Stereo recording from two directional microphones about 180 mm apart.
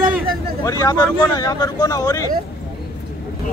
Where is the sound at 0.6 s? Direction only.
20° left (ahead or behind).